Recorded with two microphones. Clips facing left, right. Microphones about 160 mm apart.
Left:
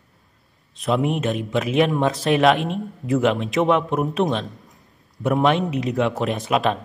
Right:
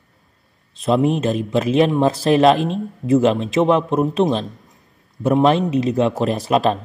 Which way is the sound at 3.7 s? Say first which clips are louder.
Right 3 dB; 30° right (ahead or behind).